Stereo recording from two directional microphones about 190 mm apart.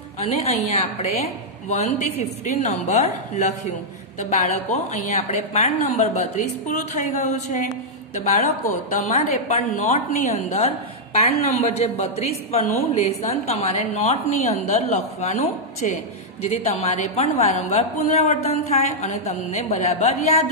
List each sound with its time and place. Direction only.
0.2 s a woman's voice: 35° left (ahead or behind)
16.4 s a woman's voice: 35° left (ahead or behind)